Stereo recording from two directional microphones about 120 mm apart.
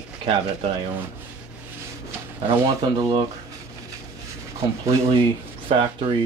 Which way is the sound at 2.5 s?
40° right (ahead or behind).